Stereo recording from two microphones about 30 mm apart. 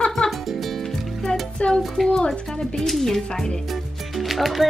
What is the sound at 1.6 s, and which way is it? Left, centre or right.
Music, left.